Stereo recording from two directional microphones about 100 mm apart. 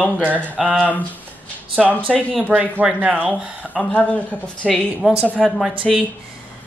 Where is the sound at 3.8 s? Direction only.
15° left (ahead or behind).